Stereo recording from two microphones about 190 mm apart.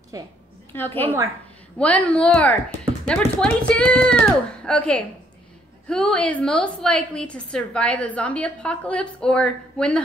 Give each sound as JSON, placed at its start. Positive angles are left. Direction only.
{"t": 0.1, "sound": "a woman's voice", "side_deg": -20}
{"t": 0.7, "sound": "a woman's voice", "side_deg": 10}